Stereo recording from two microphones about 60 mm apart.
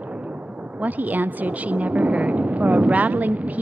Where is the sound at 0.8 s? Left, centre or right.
Right.